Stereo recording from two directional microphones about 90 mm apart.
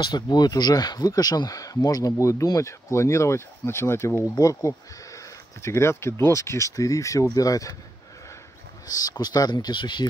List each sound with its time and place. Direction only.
0.0 s speech: 55° left (ahead or behind)
8.8 s speech: 45° left (ahead or behind)